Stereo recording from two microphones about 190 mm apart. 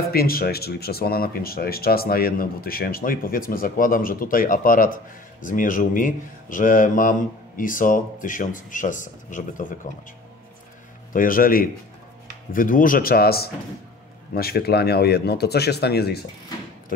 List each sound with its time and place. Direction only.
0.1 s speech: 55° left (ahead or behind)
11.1 s speech: 45° left (ahead or behind)